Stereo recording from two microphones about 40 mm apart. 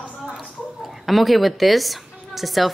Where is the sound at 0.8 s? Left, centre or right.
Centre.